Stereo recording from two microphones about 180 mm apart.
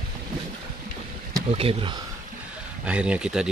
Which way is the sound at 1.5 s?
30° right (ahead or behind).